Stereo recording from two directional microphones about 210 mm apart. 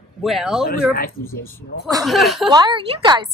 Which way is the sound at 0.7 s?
45° left (ahead or behind).